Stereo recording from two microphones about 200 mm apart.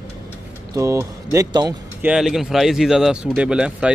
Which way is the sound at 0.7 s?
15° right (ahead or behind).